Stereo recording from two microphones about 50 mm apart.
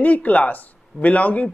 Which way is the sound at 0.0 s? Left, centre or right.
Left.